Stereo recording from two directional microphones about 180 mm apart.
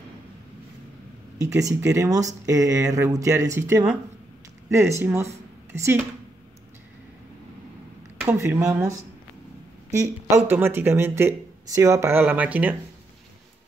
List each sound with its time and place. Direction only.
1.5 s speech: 15° right (ahead or behind)
8.2 s speech: 15° right (ahead or behind)
9.9 s speech: 15° right (ahead or behind)